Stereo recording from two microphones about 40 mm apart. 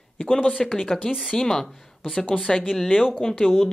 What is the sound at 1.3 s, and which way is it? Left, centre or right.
Speech, centre.